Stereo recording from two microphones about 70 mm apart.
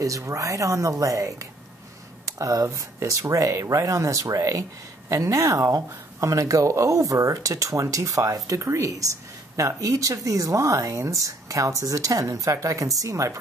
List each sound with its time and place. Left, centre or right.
0.0 s speech: right